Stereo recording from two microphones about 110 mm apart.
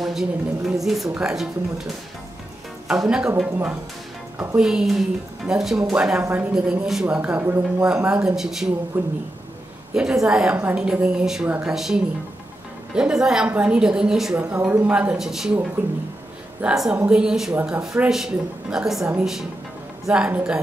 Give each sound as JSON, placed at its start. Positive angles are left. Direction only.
{"t": 0.0, "sound": "a woman's voice", "side_deg": -5}
{"t": 2.9, "sound": "a woman's voice", "side_deg": -5}
{"t": 9.0, "sound": "a woman's voice", "side_deg": -15}
{"t": 14.3, "sound": "a woman's voice", "side_deg": -20}
{"t": 14.6, "sound": "a woman's voice", "side_deg": -10}
{"t": 16.6, "sound": "a woman's voice", "side_deg": -5}